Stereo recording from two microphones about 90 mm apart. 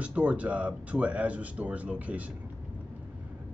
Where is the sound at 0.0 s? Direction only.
15° right (ahead or behind).